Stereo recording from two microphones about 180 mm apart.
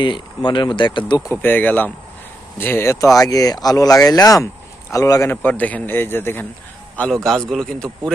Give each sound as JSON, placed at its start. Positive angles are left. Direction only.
{"t": 0.0, "sound": "a man's voice", "side_deg": 25}